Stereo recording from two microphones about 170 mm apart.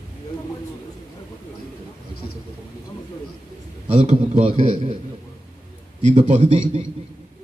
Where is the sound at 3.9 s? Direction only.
40° right (ahead or behind).